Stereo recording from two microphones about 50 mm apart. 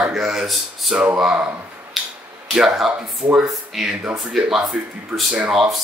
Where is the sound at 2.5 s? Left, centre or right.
Centre.